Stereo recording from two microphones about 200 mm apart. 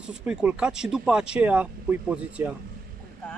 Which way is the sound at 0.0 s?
5° right (ahead or behind).